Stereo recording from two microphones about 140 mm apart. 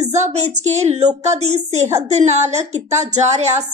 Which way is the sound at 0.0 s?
55° right (ahead or behind).